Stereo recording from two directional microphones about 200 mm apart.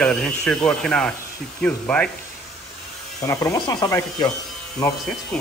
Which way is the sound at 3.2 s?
15° left (ahead or behind).